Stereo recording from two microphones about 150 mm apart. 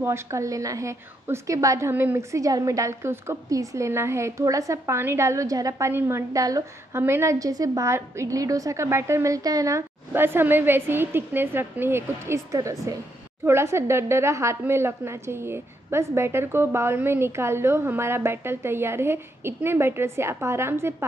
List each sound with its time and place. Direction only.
0.0 s a woman's voice: 20° right (ahead or behind)